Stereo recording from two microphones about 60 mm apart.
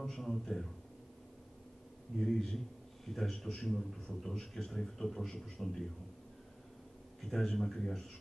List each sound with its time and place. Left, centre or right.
0.0 s a man's voice: centre
2.1 s a man's voice: centre
7.2 s a man's voice: centre